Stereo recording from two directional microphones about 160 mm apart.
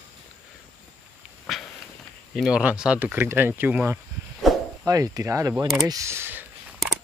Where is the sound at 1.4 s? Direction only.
5° left (ahead or behind).